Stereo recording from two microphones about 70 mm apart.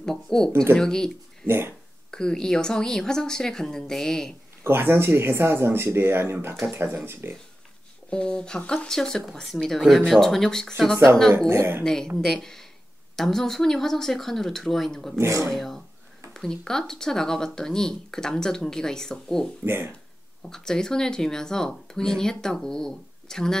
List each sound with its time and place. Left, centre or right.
0.0 s speech: centre
4.6 s speech: right
8.1 s speech: centre
11.3 s speech: right
11.8 s speech: centre
15.1 s speech: right
15.5 s speech: centre
19.6 s speech: right
20.4 s speech: centre